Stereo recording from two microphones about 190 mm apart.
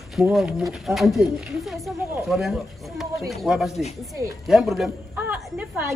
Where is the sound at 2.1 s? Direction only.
Centre (ahead or behind).